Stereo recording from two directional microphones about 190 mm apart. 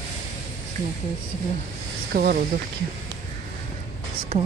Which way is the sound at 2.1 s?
50° right (ahead or behind).